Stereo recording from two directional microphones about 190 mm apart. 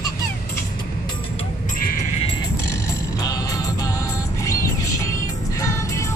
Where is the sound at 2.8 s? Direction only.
20° left (ahead or behind).